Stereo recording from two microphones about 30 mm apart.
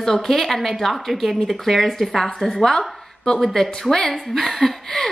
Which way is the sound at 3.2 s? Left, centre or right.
Centre.